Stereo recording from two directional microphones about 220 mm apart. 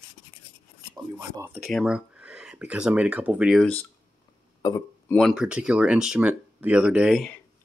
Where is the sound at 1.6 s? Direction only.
Centre (ahead or behind).